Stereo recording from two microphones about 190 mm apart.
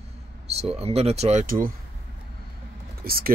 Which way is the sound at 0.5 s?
30° right (ahead or behind).